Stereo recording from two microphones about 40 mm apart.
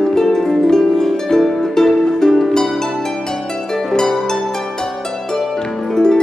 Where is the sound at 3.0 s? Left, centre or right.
Centre.